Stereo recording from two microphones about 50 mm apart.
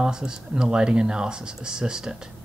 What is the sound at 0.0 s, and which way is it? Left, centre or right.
Speech, centre.